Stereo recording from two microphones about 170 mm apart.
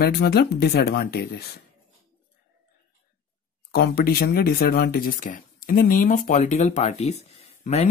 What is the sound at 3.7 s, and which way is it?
Speech, 65° left (ahead or behind).